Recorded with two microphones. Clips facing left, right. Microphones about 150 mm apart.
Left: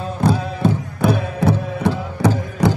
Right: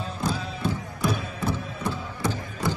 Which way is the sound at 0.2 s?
60° left (ahead or behind).